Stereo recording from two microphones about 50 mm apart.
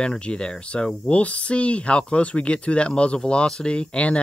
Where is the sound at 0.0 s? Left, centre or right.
Centre.